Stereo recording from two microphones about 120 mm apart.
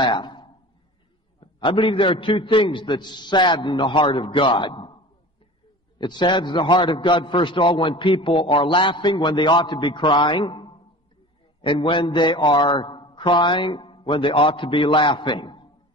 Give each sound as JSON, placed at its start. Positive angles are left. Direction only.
{"t": 0.0, "sound": "a man's voice", "side_deg": 40}
{"t": 5.9, "sound": "a man's voice", "side_deg": 40}